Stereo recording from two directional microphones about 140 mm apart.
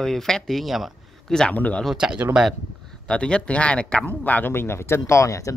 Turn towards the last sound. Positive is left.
turn(degrees=20)  # may be behind; listen again after turning